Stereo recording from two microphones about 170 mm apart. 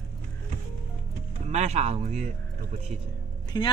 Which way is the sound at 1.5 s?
40° right (ahead or behind).